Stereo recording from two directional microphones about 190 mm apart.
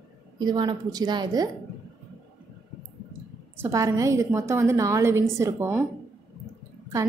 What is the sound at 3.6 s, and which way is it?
A woman's voice, 15° right (ahead or behind).